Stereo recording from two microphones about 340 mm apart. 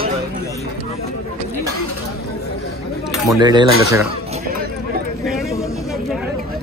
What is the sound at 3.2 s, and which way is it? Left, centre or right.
Speech, centre.